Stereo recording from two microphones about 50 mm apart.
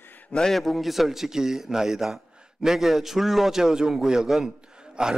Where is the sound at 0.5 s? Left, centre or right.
Centre.